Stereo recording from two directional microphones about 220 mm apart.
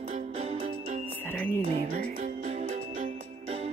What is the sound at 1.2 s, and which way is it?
Music, 10° left (ahead or behind).